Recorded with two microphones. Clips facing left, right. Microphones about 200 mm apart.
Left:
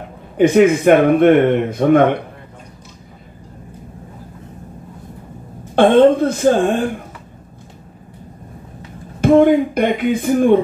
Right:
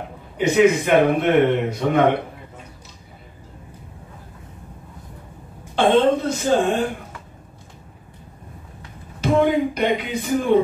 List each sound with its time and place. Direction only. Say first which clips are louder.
0.4 s speech: left 5 dB; 50° left (ahead or behind)
5.8 s speech: left 6 dB; 55° left (ahead or behind)
9.2 s speech: left 7 dB; 50° left (ahead or behind)